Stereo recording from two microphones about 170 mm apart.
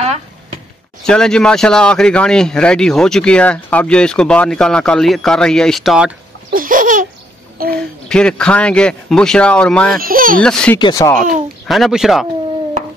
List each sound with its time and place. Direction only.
1.0 s speech: 5° left (ahead or behind)
6.5 s babbling: 55° right (ahead or behind)
7.7 s speech: 5° left (ahead or behind)
9.9 s speech: 55° right (ahead or behind)
10.4 s speech: 5° left (ahead or behind)
10.8 s speech: 20° left (ahead or behind)
11.6 s speech: centre (ahead or behind)